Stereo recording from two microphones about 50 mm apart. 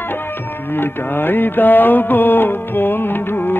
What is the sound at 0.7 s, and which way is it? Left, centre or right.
Music, left.